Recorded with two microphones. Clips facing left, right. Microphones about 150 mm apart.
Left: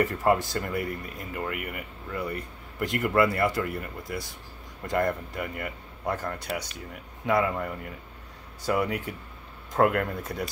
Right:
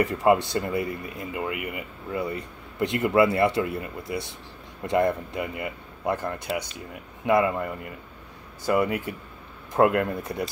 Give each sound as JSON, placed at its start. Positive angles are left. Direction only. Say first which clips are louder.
{"t": 0.0, "sound": "speech", "louder": "right 3 dB", "side_deg": -15}
{"t": 8.7, "sound": "speech", "louder": "right 5 dB", "side_deg": -10}
{"t": 10.2, "sound": "speech", "louder": "right 3 dB", "side_deg": -25}